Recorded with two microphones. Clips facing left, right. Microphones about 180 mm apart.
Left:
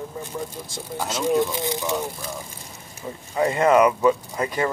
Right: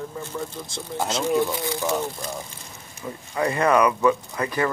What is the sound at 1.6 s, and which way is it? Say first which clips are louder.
Speech: even; 20° left (ahead or behind).